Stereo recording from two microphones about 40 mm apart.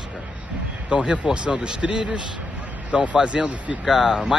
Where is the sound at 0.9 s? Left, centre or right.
Right.